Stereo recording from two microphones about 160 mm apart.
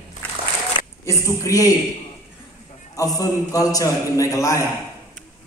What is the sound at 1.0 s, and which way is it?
Speech, 20° left (ahead or behind).